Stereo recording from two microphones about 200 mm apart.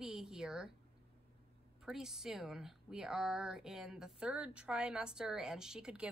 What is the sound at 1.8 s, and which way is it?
Speech, 5° right (ahead or behind).